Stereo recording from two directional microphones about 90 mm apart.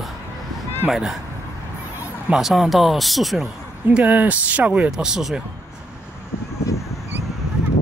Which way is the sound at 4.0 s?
15° right (ahead or behind).